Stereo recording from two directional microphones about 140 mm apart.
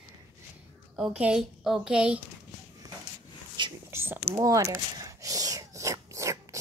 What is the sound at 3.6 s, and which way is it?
Whispering, 35° right (ahead or behind).